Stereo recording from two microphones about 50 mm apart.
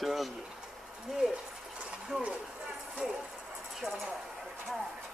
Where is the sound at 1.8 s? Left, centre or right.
Centre.